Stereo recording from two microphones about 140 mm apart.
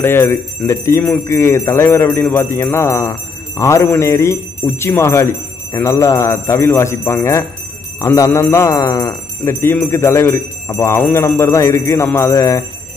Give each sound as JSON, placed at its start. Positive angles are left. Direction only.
{"t": 0.0, "sound": "speech", "side_deg": 15}